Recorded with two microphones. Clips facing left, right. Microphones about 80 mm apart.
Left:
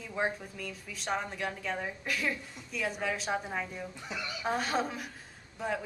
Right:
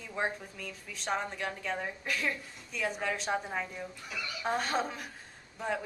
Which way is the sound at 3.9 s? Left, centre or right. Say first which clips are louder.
Left 2 dB; left.